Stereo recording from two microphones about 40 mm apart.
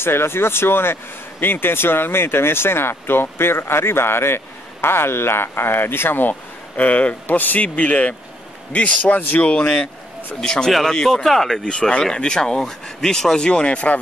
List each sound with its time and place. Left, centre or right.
0.0 s speech: left
1.4 s speech: left
6.8 s speech: left
7.2 s speech: left; by 11.6 s centre
11.6 s speech: left